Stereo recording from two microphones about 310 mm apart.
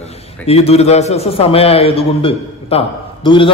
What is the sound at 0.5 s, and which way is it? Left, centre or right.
A man's voice, centre.